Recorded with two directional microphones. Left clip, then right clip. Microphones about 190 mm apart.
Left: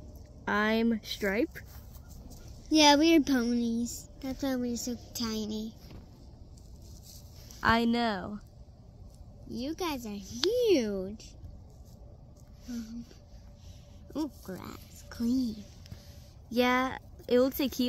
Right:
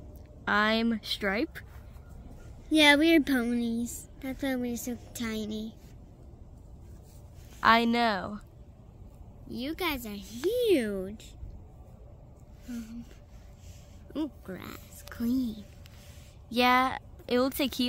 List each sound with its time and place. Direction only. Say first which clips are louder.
0.5 s a woman's voice: right 2 dB; centre (ahead or behind)
2.7 s a woman's voice: right 1 dB; 25° left (ahead or behind)
7.6 s speech: right 4 dB; 5° right (ahead or behind)
9.5 s a woman's voice: right 2 dB; 25° left (ahead or behind)
14.5 s music: right 1 dB; 25° left (ahead or behind)
16.4 s speech: right 3 dB; 5° right (ahead or behind)